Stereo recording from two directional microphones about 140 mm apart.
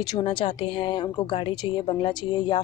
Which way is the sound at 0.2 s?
35° left (ahead or behind).